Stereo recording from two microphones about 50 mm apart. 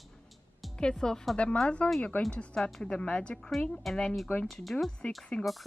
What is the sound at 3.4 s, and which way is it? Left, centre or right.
Speech, centre.